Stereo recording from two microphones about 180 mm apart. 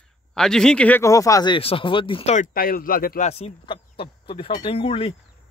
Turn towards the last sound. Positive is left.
turn(degrees=30)  # may be behind; listen again after turning